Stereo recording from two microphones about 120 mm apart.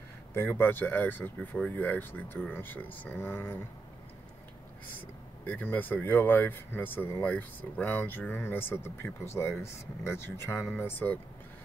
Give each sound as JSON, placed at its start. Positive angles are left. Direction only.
{"t": 0.3, "sound": "speech", "side_deg": 20}
{"t": 5.4, "sound": "speech", "side_deg": 15}